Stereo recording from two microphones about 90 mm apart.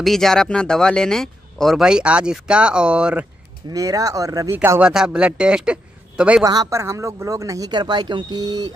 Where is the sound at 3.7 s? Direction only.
40° right (ahead or behind).